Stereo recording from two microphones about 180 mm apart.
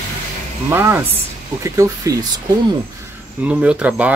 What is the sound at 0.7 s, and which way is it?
Speech, 15° right (ahead or behind).